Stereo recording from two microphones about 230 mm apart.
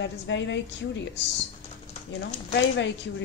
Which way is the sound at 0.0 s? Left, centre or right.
Left.